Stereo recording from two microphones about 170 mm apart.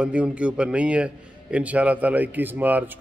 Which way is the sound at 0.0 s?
5° right (ahead or behind).